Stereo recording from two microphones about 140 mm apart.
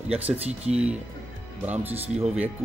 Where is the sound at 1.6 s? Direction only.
10° right (ahead or behind).